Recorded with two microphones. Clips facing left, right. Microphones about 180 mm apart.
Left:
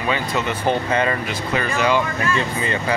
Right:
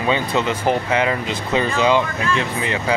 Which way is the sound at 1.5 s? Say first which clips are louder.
Right 3 dB; 20° right (ahead or behind).